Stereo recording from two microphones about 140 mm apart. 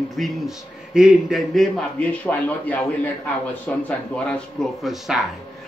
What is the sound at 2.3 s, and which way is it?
A man's voice, 15° left (ahead or behind).